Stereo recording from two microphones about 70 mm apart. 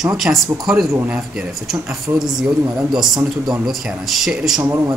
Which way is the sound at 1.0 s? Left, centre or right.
Centre.